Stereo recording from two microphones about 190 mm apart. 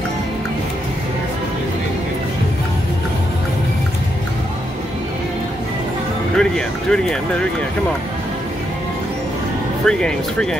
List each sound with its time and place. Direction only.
6.3 s speech: 5° left (ahead or behind)
9.8 s speech: 5° left (ahead or behind)